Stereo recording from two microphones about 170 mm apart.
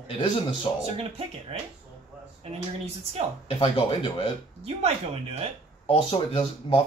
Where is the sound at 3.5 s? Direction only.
30° left (ahead or behind).